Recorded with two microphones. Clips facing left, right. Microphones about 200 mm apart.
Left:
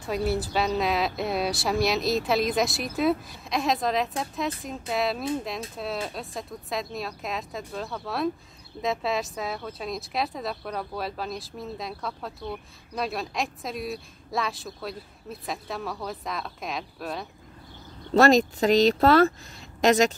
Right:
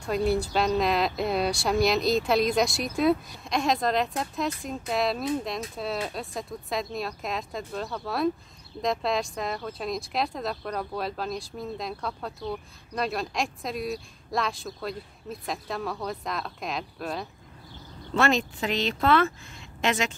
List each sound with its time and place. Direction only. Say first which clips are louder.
0.0 s speech: right 2 dB; centre (ahead or behind)
18.1 s speech: left 6 dB; 40° left (ahead or behind)